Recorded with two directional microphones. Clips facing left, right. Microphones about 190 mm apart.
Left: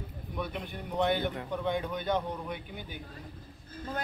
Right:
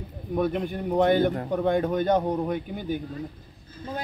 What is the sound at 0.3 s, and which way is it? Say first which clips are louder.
A man's voice: right 12 dB; 45° right (ahead or behind).